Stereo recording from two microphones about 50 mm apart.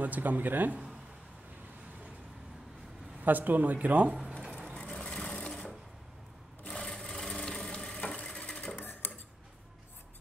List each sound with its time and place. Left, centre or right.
0.0 s speech: right
3.3 s speech: right
4.1 s a sound: centre
4.7 s vehicle: centre
6.7 s sewing machine: centre
8.1 s a sound: centre
8.4 s sewing machine: left
8.7 s tick-tock: left